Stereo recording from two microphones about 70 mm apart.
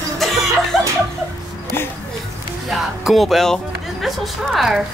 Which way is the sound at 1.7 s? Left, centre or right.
Left.